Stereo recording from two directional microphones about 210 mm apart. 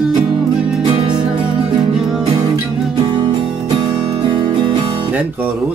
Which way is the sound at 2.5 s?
25° right (ahead or behind).